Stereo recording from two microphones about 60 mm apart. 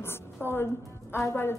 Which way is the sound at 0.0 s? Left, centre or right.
Left.